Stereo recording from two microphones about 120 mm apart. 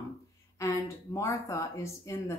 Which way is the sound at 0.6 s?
25° left (ahead or behind).